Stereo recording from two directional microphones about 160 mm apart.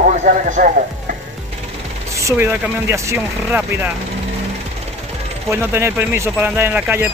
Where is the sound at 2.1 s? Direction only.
15° right (ahead or behind).